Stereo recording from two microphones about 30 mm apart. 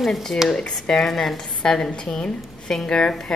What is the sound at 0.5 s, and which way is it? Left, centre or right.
Speech, left.